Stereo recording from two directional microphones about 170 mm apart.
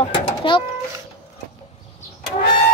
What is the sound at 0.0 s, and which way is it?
Bird, 30° left (ahead or behind).